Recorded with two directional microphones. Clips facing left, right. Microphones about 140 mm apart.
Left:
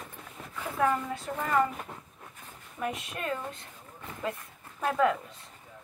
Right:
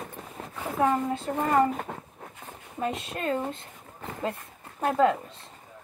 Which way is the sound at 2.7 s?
25° right (ahead or behind).